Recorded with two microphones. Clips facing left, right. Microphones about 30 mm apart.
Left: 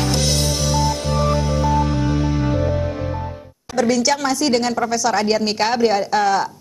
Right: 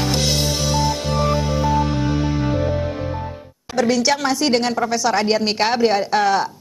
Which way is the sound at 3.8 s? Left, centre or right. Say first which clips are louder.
Even; centre.